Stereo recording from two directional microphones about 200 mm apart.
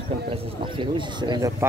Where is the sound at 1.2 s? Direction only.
20° right (ahead or behind).